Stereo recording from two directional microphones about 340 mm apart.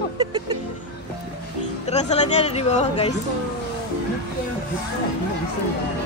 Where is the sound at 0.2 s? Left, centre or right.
Centre.